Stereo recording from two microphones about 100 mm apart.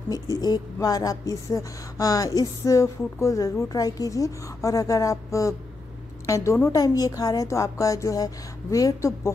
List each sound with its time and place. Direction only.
0.1 s a woman's voice: 40° left (ahead or behind)